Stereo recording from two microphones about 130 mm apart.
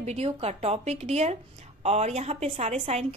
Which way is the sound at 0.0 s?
55° right (ahead or behind).